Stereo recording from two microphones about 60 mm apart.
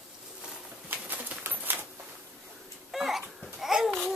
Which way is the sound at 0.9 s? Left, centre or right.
Right.